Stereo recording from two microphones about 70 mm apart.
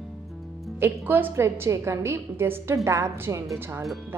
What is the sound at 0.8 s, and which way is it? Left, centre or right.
Speech, right.